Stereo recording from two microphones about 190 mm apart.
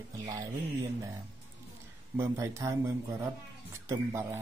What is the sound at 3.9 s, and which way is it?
Speech, 15° right (ahead or behind).